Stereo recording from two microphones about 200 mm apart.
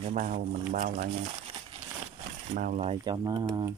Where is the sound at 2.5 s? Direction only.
40° right (ahead or behind); by 3.7 s 20° right (ahead or behind).